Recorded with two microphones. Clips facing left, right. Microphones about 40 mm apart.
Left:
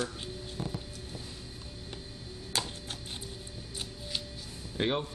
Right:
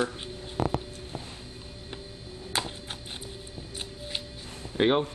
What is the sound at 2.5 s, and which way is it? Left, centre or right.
Chopping, right.